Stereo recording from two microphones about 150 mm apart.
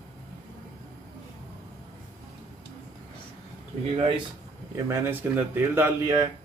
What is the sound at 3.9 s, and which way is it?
Speech, 35° right (ahead or behind).